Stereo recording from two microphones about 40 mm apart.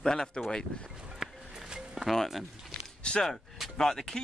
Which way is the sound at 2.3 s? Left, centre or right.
Centre.